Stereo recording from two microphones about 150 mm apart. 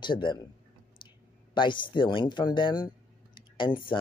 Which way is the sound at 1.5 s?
35° left (ahead or behind).